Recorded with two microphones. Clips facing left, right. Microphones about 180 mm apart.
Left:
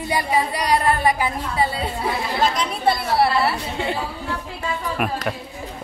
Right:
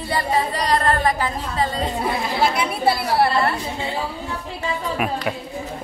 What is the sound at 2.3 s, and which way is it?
Speech, 10° right (ahead or behind).